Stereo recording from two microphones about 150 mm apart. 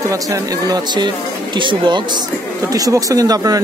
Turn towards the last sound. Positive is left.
turn(degrees=-25)  # may be behind; listen again after turning